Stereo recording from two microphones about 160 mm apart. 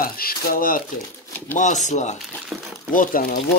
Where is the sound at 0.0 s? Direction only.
65° left (ahead or behind).